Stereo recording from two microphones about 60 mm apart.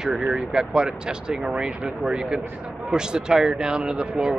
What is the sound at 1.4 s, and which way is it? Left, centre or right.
Speech, centre.